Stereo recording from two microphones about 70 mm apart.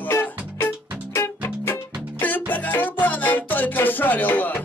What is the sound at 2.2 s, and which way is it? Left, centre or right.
Music, left.